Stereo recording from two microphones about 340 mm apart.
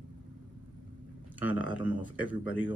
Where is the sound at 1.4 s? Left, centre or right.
Centre.